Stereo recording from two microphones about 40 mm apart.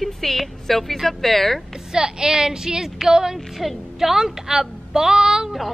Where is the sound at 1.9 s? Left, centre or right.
Centre.